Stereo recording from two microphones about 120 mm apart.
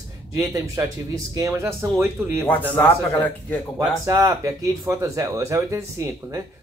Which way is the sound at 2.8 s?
15° left (ahead or behind).